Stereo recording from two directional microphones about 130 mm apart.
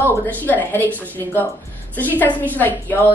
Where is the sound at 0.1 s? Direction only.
15° left (ahead or behind).